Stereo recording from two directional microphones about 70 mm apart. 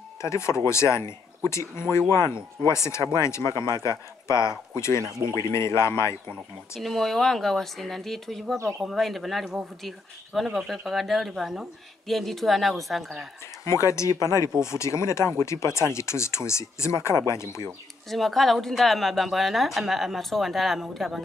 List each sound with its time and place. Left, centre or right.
0.2 s speech: left
6.8 s speech: centre
13.7 s speech: left
18.0 s speech: centre